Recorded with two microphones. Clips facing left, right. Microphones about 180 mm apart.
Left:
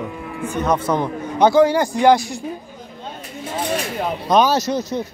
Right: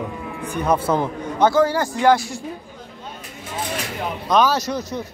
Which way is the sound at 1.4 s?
15° left (ahead or behind).